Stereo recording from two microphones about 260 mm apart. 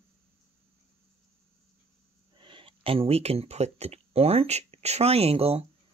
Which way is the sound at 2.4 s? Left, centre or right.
Centre.